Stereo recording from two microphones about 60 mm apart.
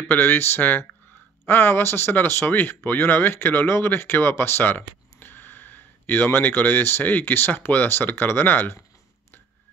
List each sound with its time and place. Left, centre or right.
0.1 s speech: left